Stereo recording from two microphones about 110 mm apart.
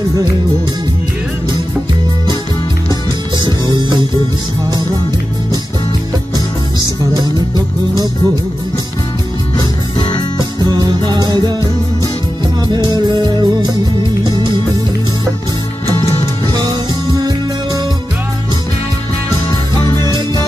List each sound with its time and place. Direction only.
3.4 s music: 40° right (ahead or behind)
7.5 s music: 35° right (ahead or behind)
9.6 s music: 45° left (ahead or behind)
10.6 s music: 40° right (ahead or behind)
12.6 s music: 40° right (ahead or behind)
19.8 s music: 30° left (ahead or behind)